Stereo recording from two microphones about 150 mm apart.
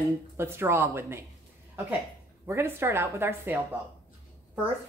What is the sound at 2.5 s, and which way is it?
Speech, 15° right (ahead or behind).